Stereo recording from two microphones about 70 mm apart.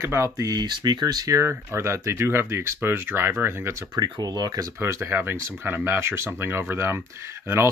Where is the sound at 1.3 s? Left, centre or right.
Right.